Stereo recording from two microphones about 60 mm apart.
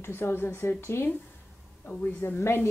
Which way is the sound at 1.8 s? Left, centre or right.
Left.